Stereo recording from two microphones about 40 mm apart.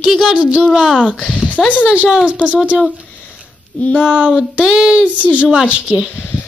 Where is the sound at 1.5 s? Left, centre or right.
Left.